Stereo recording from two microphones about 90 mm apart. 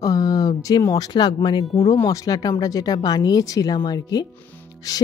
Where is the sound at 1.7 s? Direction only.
40° left (ahead or behind).